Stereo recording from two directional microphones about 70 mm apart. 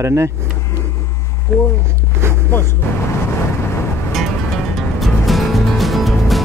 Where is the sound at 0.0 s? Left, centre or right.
Right.